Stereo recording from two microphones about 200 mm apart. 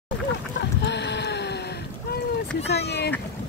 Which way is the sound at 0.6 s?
60° left (ahead or behind).